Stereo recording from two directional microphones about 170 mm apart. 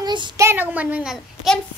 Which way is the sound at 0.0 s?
25° right (ahead or behind).